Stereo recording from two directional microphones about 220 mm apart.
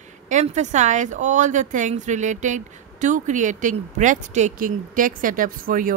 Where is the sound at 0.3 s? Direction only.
35° right (ahead or behind).